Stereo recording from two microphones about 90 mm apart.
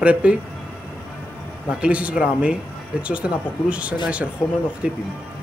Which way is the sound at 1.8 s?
15° right (ahead or behind).